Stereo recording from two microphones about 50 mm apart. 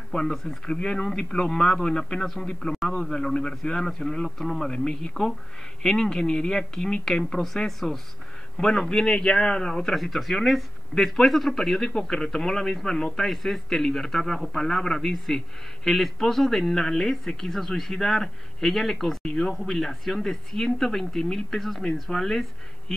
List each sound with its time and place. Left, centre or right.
0.1 s a man's voice: centre